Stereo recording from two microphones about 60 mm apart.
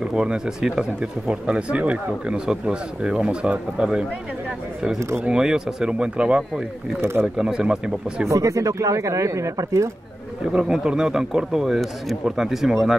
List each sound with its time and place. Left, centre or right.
0.0 s speech: centre
5.2 s speech: centre
7.0 s speech: right
7.3 s speech: centre
8.3 s speech: right
10.5 s speech: centre